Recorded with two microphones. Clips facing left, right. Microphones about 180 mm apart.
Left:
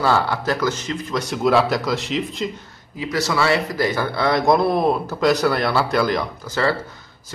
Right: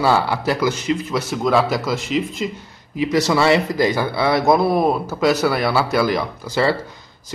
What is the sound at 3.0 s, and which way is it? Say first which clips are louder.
Speech: right 4 dB; 20° right (ahead or behind).